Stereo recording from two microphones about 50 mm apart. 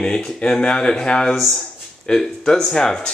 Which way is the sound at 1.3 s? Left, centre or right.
Centre.